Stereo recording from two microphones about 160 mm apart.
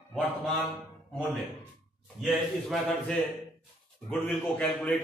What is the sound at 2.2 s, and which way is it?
A man's voice, centre (ahead or behind).